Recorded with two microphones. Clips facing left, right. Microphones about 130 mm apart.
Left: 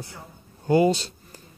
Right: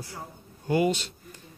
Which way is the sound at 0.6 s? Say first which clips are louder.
Left 5 dB; 30° left (ahead or behind).